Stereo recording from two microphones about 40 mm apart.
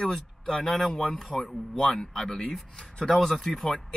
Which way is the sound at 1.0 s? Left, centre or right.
Left.